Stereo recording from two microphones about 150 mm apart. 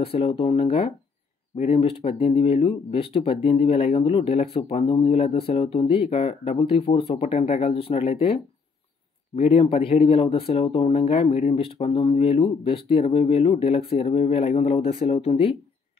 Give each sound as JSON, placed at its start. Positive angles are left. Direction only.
{"t": 0.0, "sound": "speech", "side_deg": 40}